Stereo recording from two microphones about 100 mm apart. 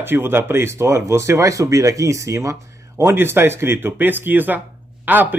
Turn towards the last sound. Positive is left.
turn(degrees=-20)  # may be behind; listen again after turning